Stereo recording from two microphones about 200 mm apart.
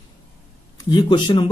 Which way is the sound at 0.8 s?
20° left (ahead or behind).